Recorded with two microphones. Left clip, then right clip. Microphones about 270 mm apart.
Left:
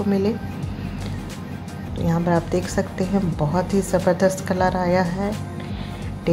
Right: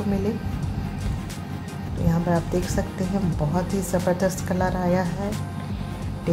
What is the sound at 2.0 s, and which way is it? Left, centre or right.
Speech, left.